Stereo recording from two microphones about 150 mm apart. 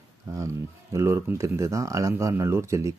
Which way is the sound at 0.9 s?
20° right (ahead or behind).